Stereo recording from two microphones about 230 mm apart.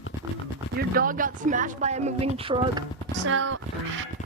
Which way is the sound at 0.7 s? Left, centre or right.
Right.